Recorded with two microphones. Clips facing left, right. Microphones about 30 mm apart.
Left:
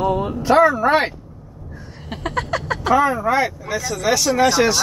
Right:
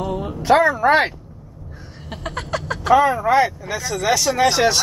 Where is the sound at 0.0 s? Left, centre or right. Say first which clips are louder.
Left 5 dB; centre.